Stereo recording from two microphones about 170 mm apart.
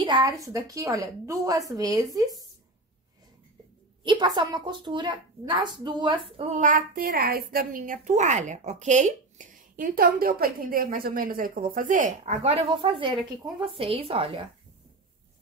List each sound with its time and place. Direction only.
0.0 s a child's voice: 25° right (ahead or behind)
4.0 s a woman's voice: 25° right (ahead or behind)
6.6 s a woman's voice: 55° right (ahead or behind)
9.8 s a woman's voice: 55° right (ahead or behind)
12.3 s speech: 35° right (ahead or behind)